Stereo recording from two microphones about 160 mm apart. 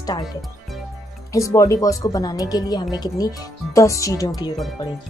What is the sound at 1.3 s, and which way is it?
Speech, 20° left (ahead or behind).